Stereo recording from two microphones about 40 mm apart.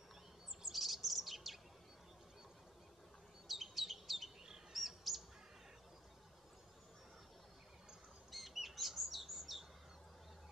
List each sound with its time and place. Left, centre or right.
0.7 s chirp: centre
3.4 s chirp: centre
8.3 s bird: centre